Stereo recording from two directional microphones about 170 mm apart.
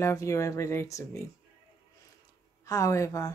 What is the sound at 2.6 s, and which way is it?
Speech, 20° left (ahead or behind).